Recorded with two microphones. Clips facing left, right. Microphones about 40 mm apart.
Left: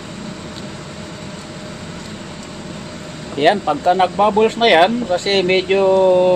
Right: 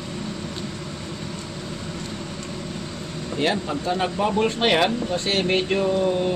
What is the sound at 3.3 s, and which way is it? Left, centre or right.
Speech, left.